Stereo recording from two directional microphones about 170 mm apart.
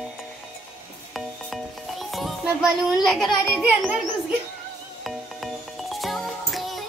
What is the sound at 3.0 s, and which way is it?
Speech, centre (ahead or behind).